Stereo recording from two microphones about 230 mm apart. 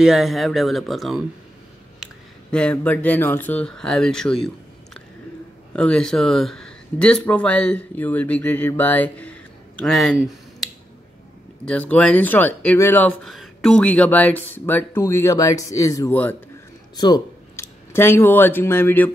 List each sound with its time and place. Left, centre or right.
0.0 s speech: centre
2.5 s speech: centre
5.7 s speech: centre